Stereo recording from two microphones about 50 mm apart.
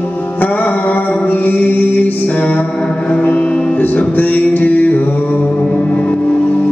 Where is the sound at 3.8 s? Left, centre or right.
Left.